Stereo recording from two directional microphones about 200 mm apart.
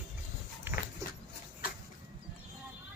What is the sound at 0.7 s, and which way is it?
Dog, 10° right (ahead or behind).